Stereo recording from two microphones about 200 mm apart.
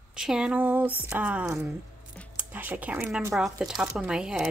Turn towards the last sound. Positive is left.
turn(degrees=-5)  # may be behind; listen again after turning